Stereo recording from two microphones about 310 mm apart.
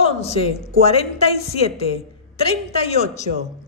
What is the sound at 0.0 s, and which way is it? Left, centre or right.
Speech, centre.